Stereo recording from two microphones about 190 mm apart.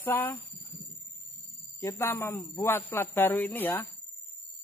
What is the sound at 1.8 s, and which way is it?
Speech, 15° left (ahead or behind).